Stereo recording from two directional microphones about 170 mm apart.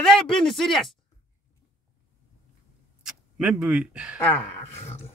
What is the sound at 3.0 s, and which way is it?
Speech, 5° right (ahead or behind).